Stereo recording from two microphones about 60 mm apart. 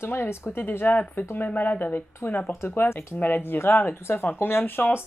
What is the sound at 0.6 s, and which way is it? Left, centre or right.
Speech, left.